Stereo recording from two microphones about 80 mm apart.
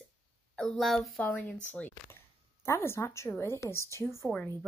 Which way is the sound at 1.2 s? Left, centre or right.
Centre.